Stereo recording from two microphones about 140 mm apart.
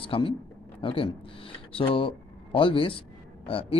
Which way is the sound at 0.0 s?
40° left (ahead or behind).